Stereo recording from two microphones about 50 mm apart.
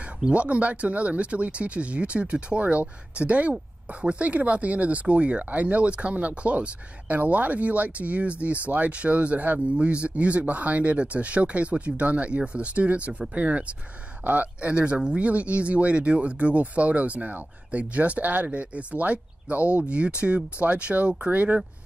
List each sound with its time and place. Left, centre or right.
0.3 s speech: right